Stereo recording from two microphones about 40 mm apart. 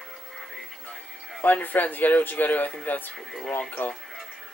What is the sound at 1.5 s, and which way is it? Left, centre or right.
Speech, left.